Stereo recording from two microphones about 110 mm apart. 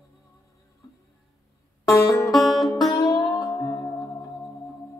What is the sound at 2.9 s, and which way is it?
Music, 35° left (ahead or behind).